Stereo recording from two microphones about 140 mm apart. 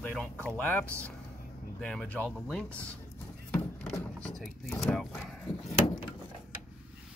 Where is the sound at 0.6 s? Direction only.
15° left (ahead or behind).